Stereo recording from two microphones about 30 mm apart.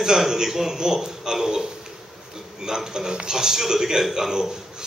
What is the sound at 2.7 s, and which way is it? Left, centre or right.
A man's voice, centre.